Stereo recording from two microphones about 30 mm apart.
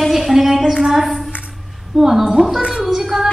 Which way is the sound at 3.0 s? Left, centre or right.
Centre.